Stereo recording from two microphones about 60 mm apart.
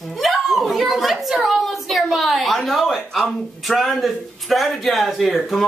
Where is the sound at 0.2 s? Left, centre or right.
Centre.